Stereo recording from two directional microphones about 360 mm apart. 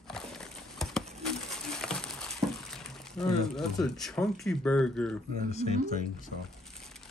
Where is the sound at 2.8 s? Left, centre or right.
Centre.